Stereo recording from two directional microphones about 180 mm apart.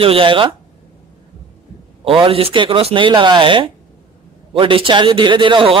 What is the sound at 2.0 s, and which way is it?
Speech, 30° right (ahead or behind).